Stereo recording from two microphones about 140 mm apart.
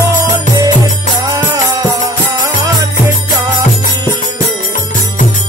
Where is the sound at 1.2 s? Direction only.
25° right (ahead or behind).